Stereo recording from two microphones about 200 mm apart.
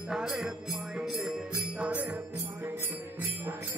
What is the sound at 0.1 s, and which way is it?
Music, 5° right (ahead or behind).